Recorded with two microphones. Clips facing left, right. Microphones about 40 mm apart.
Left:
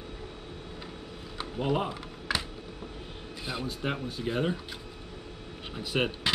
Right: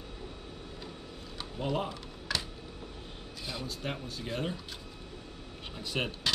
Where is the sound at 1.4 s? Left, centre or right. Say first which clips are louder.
Left 4 dB; centre.